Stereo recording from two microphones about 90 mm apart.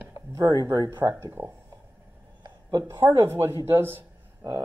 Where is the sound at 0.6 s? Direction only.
35° right (ahead or behind).